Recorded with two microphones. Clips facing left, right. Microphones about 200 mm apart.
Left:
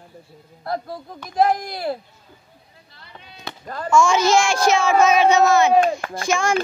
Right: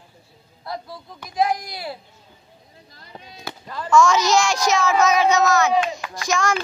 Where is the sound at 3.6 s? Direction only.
45° left (ahead or behind).